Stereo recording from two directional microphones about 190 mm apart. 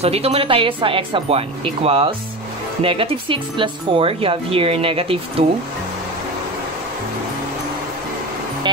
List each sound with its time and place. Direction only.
0.0 s speech: 30° right (ahead or behind)